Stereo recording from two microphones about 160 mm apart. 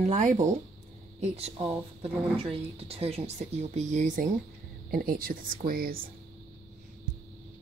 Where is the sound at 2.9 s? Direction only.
40° right (ahead or behind); by 6.0 s 65° right (ahead or behind).